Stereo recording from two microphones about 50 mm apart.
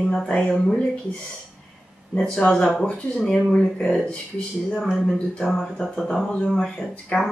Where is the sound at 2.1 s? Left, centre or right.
Centre.